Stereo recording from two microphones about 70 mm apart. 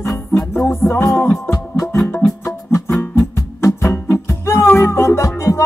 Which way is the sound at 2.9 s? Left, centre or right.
Left.